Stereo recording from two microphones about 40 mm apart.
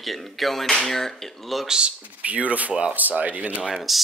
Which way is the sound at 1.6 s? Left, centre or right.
Centre.